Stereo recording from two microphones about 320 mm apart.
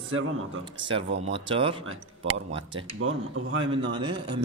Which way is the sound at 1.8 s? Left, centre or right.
Right.